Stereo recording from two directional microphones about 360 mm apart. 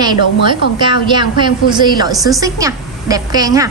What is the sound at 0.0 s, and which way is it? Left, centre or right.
A woman's voice, centre.